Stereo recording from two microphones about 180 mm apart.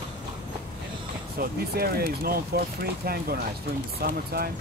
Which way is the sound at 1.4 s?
60° right (ahead or behind).